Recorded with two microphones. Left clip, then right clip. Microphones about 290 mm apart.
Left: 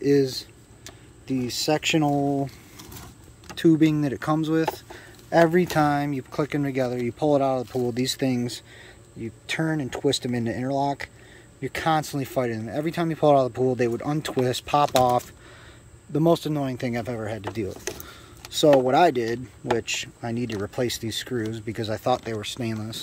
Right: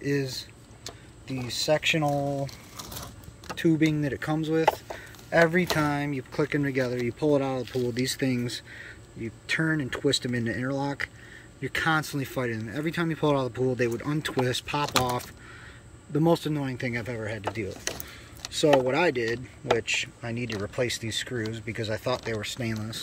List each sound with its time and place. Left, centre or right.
0.0 s speech: centre
1.7 s speech: centre
2.1 s speech: left
3.8 s speech: centre